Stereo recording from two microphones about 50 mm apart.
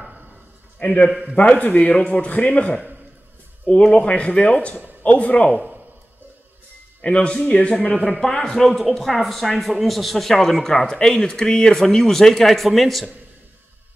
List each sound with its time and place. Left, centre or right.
0.8 s speech: left
3.6 s speech: centre
5.5 s speech: centre
7.0 s a man's voice: left
8.6 s speech: centre